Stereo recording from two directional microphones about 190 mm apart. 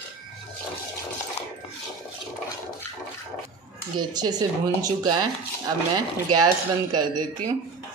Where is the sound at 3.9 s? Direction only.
20° right (ahead or behind).